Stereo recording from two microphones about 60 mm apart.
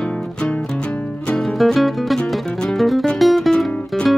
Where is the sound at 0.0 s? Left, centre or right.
Centre.